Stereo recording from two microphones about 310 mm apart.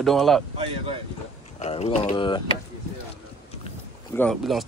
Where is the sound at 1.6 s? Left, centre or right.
Left.